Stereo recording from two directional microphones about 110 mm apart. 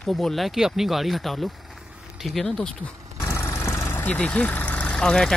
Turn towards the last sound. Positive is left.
turn(degrees=5)  # may be behind; listen again after turning